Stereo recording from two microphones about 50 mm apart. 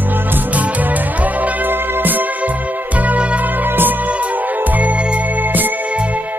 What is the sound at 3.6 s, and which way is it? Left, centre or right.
Music, right.